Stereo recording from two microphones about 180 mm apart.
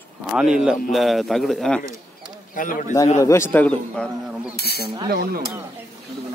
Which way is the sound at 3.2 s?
15° left (ahead or behind).